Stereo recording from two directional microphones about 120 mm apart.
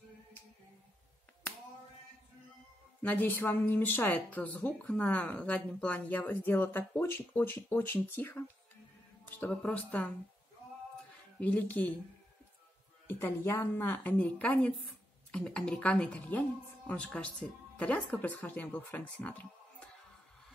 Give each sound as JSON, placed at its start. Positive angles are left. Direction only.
{"t": 3.0, "sound": "speech", "side_deg": 15}
{"t": 11.3, "sound": "speech", "side_deg": 10}
{"t": 13.0, "sound": "speech", "side_deg": 20}